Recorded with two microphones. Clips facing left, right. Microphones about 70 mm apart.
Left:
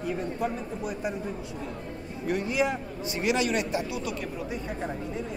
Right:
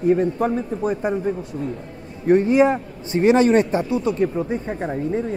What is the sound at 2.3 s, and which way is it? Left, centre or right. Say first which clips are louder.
A man's voice: right 12 dB; right.